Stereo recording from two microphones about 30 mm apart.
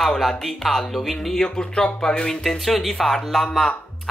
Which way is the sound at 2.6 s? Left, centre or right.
Centre.